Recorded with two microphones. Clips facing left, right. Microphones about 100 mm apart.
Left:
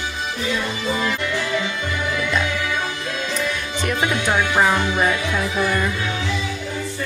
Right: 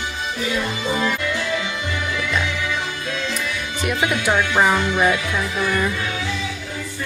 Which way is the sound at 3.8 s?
10° right (ahead or behind).